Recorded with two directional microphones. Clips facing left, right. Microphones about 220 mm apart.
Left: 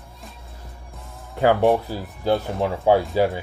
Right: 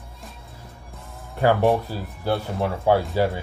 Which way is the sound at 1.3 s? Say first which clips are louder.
Left 1 dB; 15° left (ahead or behind).